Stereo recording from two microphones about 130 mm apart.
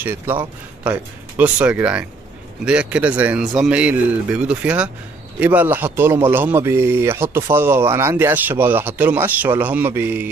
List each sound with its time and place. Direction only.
0.0 s speech: 15° right (ahead or behind)